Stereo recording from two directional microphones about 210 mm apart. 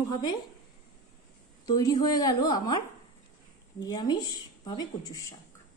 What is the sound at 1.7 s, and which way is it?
A woman's voice, 15° left (ahead or behind).